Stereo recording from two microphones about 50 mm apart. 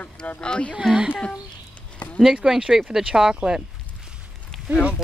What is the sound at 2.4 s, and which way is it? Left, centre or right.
Speech, centre.